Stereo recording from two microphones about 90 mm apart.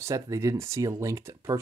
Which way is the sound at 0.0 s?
35° right (ahead or behind).